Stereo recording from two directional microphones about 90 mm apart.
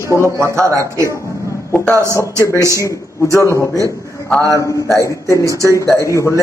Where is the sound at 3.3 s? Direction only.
35° left (ahead or behind).